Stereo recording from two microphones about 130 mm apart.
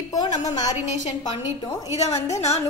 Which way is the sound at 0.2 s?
60° left (ahead or behind).